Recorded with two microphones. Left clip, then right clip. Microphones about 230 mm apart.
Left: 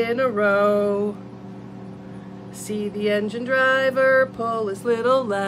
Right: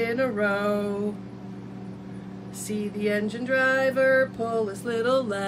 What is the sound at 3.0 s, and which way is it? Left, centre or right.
Music, left.